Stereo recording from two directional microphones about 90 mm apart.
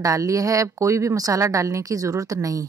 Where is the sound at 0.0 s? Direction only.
40° right (ahead or behind).